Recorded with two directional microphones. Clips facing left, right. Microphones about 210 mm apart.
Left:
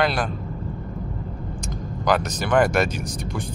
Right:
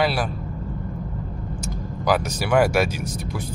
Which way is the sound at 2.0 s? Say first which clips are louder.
Even; 5° right (ahead or behind).